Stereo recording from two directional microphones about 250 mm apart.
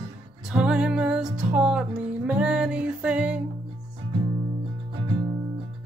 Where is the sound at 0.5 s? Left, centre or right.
Centre.